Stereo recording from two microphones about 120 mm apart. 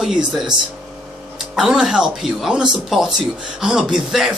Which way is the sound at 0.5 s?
40° right (ahead or behind).